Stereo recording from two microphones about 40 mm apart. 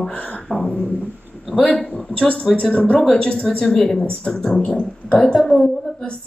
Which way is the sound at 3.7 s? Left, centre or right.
Centre.